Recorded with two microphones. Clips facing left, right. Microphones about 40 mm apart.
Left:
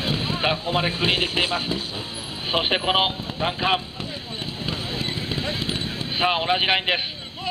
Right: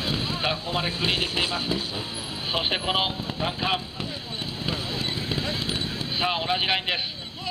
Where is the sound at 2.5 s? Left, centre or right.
Left.